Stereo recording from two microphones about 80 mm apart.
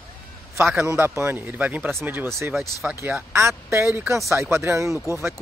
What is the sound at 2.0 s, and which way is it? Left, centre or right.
Speech, right.